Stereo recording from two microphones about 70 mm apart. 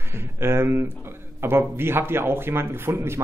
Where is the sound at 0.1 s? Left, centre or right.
Right.